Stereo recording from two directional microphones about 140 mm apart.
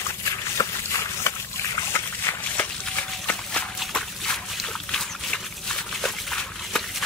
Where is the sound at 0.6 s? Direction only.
20° left (ahead or behind).